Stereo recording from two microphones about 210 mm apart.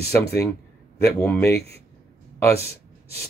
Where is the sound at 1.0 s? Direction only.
10° left (ahead or behind).